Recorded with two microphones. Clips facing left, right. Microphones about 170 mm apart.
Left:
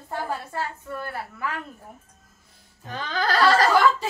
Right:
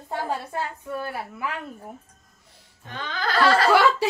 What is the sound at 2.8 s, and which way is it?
Music, 40° left (ahead or behind).